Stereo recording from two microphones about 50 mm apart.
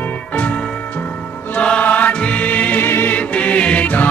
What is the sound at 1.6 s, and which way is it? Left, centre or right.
Music, left.